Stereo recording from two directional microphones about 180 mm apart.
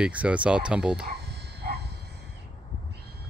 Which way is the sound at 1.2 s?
65° right (ahead or behind).